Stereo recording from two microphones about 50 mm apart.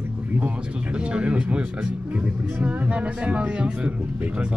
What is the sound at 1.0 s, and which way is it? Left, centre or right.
Speech, right.